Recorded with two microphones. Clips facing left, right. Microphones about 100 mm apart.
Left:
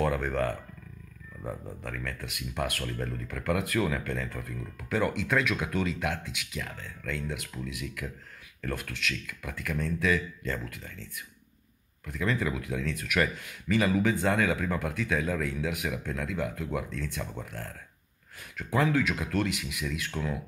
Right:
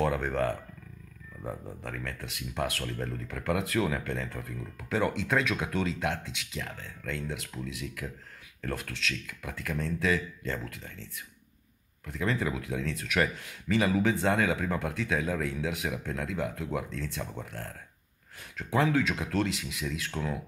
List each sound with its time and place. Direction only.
0.0 s speech: 25° right (ahead or behind)
1.8 s speech: 25° right (ahead or behind)